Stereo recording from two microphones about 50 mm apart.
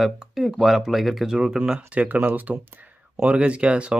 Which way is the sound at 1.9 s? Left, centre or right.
Right.